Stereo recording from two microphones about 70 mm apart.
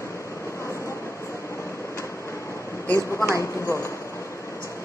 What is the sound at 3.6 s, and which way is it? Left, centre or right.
Speech, left.